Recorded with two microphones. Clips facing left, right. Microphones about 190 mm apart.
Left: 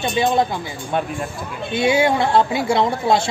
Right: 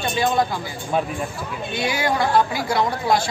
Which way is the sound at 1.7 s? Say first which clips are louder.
Left 7 dB; 25° left (ahead or behind).